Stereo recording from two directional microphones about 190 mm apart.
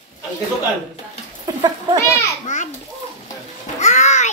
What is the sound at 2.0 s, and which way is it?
Children playing, 15° left (ahead or behind).